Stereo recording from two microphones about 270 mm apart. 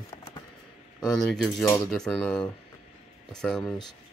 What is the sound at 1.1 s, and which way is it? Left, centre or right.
Speech, centre.